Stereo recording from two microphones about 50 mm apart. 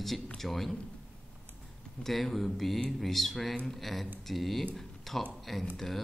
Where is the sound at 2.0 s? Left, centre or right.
Centre.